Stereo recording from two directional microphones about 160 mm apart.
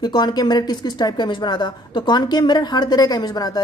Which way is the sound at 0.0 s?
25° left (ahead or behind).